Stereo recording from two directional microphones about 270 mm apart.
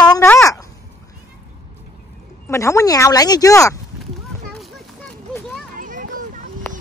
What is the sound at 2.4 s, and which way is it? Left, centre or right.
Speech, centre.